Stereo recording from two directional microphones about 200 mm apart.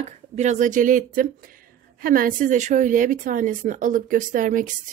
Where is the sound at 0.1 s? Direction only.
35° right (ahead or behind).